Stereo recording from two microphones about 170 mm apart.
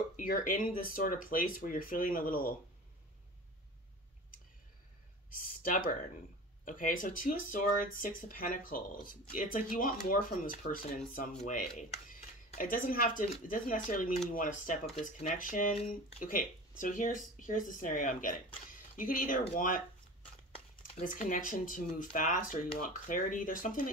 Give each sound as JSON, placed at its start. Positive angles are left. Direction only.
{"t": 0.1, "sound": "speech", "side_deg": 50}
{"t": 5.3, "sound": "speech", "side_deg": 55}
{"t": 21.0, "sound": "speech", "side_deg": 50}